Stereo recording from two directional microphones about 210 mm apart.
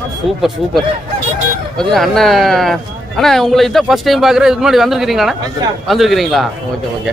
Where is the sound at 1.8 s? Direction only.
Centre (ahead or behind).